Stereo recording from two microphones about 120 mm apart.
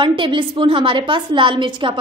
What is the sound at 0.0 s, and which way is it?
A woman's voice, 45° right (ahead or behind).